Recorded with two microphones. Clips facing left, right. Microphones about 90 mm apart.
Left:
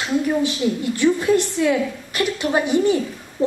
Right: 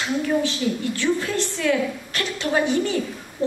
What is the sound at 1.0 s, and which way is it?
A woman's voice, 15° left (ahead or behind).